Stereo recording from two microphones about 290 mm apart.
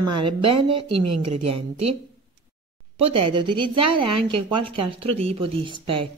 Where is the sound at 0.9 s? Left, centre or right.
Right.